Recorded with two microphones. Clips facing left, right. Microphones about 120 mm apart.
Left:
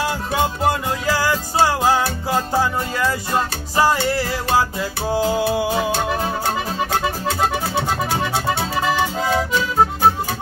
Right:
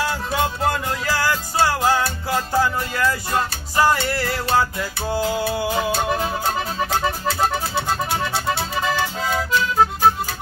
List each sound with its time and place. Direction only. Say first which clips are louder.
0.0 s music: left 1 dB; 20° left (ahead or behind)
5.2 s music: left 4 dB; 25° left (ahead or behind)